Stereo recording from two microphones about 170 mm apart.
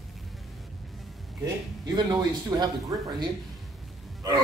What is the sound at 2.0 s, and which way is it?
Speech, 25° right (ahead or behind).